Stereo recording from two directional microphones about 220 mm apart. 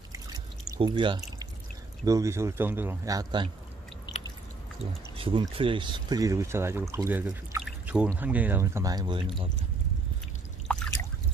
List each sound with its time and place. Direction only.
0.1 s pour: 15° right (ahead or behind)
2.0 s speech: 15° right (ahead or behind)
5.1 s speech: 25° right (ahead or behind)
10.7 s drip: 5° left (ahead or behind)